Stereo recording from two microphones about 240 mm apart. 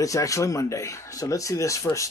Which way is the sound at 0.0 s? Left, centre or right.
Centre.